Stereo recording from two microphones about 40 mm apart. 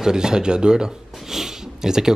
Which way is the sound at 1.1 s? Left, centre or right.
Centre.